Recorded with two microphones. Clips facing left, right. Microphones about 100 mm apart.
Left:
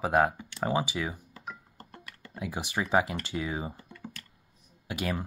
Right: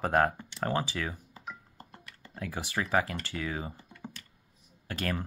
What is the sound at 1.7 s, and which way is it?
Music, 65° left (ahead or behind).